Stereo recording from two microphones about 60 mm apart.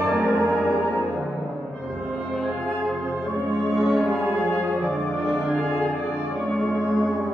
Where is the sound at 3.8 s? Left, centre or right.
Centre.